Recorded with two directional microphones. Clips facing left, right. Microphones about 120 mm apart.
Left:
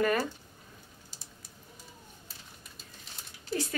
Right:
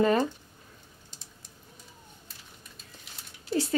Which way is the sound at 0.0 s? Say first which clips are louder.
Right 4 dB; 25° right (ahead or behind).